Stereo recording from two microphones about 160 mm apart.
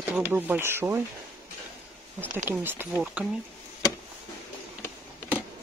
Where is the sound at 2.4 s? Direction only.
15° right (ahead or behind).